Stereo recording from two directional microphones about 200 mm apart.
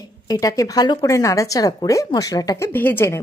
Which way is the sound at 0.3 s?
15° left (ahead or behind).